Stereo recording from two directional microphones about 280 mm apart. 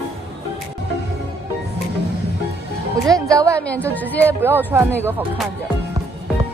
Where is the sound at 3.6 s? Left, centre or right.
Centre.